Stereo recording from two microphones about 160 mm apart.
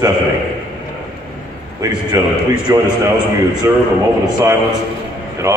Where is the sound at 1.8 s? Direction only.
20° right (ahead or behind).